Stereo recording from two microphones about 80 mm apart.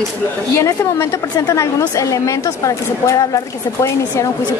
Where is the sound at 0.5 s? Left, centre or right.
Left.